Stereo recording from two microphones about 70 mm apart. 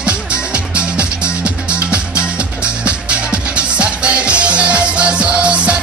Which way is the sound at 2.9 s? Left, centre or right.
Centre.